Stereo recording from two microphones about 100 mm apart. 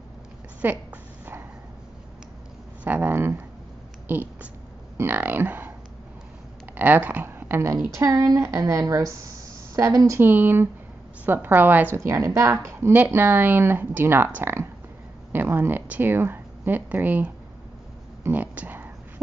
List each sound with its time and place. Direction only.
0.6 s speech: 20° right (ahead or behind)
2.8 s speech: 20° right (ahead or behind)
4.1 s a sound: 15° right (ahead or behind)
4.9 s speech: 20° right (ahead or behind)
6.8 s a woman's voice: 15° right (ahead or behind); by 10.2 s 30° right (ahead or behind)
10.2 s speech: 20° right (ahead or behind)
12.1 s speech: 30° right (ahead or behind)
18.2 s a sound: 15° right (ahead or behind)